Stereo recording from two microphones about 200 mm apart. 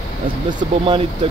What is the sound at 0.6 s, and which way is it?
Speech, 25° right (ahead or behind).